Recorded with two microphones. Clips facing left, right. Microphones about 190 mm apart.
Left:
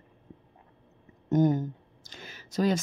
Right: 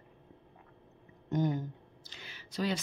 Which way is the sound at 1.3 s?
45° left (ahead or behind).